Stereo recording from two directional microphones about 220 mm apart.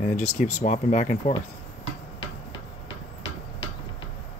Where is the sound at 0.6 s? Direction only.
30° left (ahead or behind).